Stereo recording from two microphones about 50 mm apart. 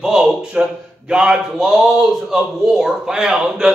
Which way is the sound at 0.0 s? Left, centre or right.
Centre.